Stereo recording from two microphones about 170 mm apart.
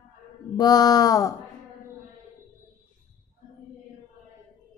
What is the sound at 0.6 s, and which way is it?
Mantra, 25° left (ahead or behind).